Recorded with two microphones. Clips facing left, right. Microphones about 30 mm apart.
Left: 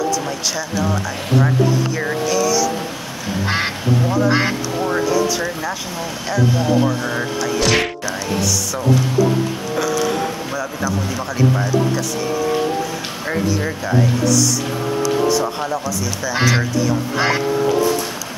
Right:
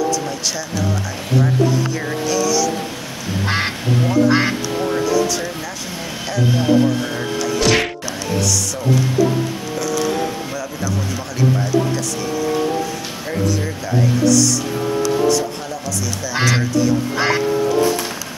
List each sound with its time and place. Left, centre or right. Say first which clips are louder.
2.0 s speech: left 1 dB; centre
7.5 s speech: right 1 dB; centre
13.3 s speech: left 1 dB; left
16.3 s speech: right 1 dB; centre